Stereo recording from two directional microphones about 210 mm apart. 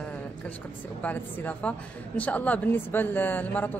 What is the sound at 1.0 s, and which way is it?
A woman's voice, 5° left (ahead or behind).